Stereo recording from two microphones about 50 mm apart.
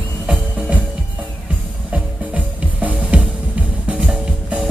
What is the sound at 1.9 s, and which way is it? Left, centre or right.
Music, right.